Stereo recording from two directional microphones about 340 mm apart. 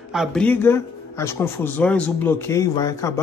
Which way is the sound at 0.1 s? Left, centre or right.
Centre.